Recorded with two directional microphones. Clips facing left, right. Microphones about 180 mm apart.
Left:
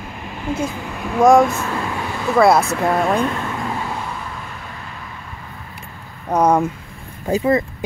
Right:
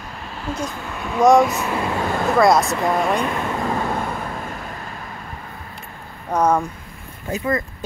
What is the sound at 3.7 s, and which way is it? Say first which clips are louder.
Vehicle: right 3 dB; 45° right (ahead or behind).